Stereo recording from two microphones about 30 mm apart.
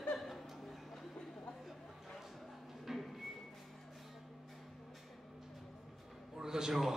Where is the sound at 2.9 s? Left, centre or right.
Centre.